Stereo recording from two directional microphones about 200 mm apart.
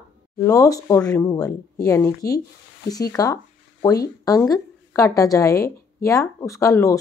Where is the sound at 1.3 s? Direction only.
15° left (ahead or behind).